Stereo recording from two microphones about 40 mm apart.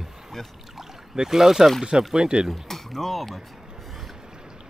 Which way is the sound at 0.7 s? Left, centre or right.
Centre.